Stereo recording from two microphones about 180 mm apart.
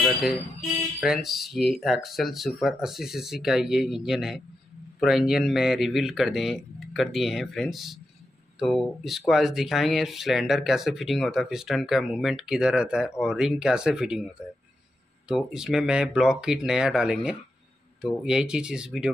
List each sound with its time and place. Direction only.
0.0 s music: 5° right (ahead or behind)
1.0 s speech: centre (ahead or behind)
15.2 s speech: 5° right (ahead or behind)